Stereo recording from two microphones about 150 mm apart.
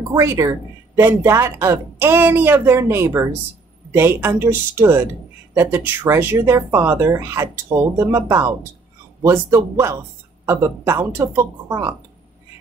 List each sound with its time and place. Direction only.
0.1 s a woman's voice: 20° right (ahead or behind)